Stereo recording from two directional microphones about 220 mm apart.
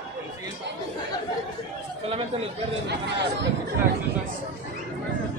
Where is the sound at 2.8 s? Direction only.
50° right (ahead or behind).